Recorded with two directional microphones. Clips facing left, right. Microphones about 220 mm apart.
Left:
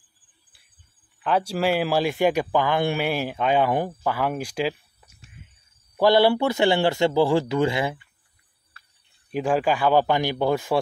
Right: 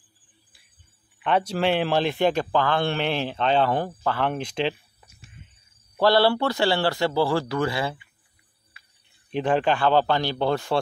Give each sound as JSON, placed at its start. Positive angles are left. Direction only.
{"t": 1.2, "sound": "speech", "side_deg": 5}
{"t": 5.9, "sound": "speech", "side_deg": 15}
{"t": 9.3, "sound": "speech", "side_deg": 5}